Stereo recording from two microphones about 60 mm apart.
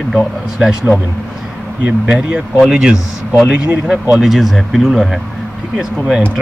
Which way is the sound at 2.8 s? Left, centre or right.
Centre.